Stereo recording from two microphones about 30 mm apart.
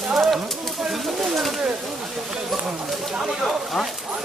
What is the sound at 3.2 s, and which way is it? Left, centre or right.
Speech, centre.